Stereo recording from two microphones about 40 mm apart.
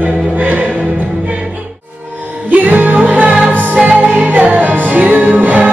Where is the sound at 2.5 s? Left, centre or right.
Right.